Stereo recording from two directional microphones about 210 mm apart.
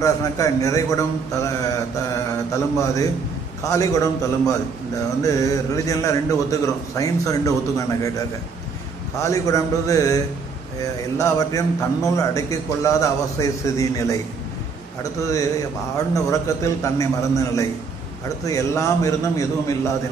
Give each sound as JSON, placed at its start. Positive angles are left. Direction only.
{"t": 0.0, "sound": "a man's voice", "side_deg": 15}
{"t": 9.2, "sound": "a man's voice", "side_deg": 15}
{"t": 11.1, "sound": "a man's voice", "side_deg": 15}
{"t": 16.3, "sound": "a man's voice", "side_deg": 15}